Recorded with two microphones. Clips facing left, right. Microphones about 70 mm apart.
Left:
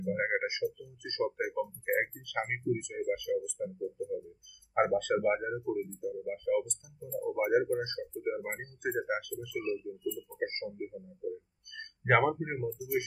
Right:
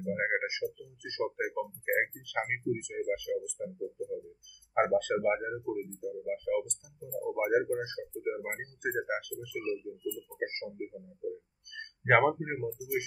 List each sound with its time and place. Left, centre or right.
0.1 s speech: centre
7.7 s a sound: centre
8.5 s speech: centre